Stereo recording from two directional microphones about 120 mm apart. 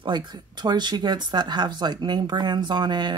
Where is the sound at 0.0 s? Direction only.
40° right (ahead or behind).